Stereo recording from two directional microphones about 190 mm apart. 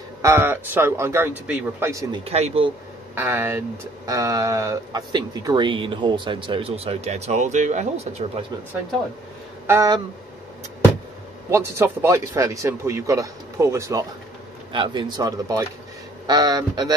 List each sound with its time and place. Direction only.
0.2 s speech: 15° right (ahead or behind)
2.2 s speech: 35° right (ahead or behind)
3.2 s speech: 10° right (ahead or behind); by 8.5 s 35° right (ahead or behind)
9.7 s speech: 20° right (ahead or behind)
11.5 s speech: 15° right (ahead or behind)